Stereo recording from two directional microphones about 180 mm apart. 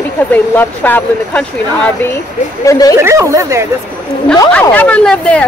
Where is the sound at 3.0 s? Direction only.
15° right (ahead or behind).